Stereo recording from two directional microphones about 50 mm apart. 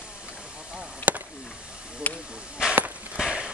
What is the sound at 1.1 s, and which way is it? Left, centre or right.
Chop, right.